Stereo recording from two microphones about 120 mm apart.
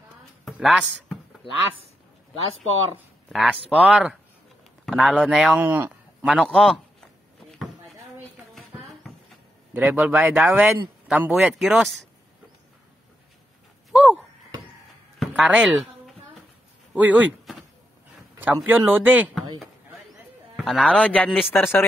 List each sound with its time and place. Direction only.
0.5 s speech: centre (ahead or behind)
1.4 s speech: 50° left (ahead or behind)
3.4 s speech: 10° right (ahead or behind)
6.3 s a man's voice: 5° left (ahead or behind)
9.8 s speech: 15° right (ahead or behind)
11.3 s speech: centre (ahead or behind)
13.9 s a sound: 5° right (ahead or behind)
15.1 s speech: 5° right (ahead or behind)
16.9 s speech: 10° right (ahead or behind)
18.4 s speech: 15° right (ahead or behind)
19.6 s a sound: centre (ahead or behind)
21.5 s a man's voice: 20° left (ahead or behind)